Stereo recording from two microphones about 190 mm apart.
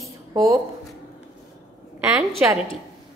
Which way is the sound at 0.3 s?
15° right (ahead or behind).